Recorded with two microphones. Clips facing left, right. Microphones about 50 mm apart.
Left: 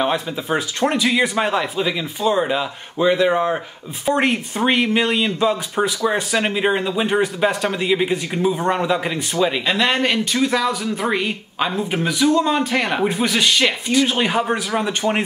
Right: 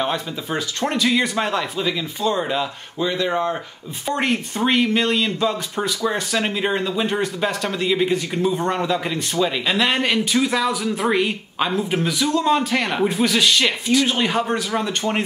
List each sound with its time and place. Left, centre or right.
0.0 s speech: centre
4.0 s speech: centre
9.7 s speech: centre